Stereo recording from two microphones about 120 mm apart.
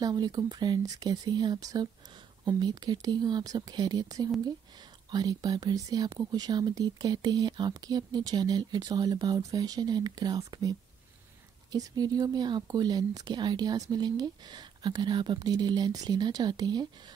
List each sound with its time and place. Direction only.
0.0 s speech: 35° right (ahead or behind)